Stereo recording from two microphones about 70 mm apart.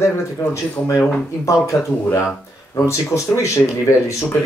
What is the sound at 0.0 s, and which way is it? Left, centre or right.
Speech, left.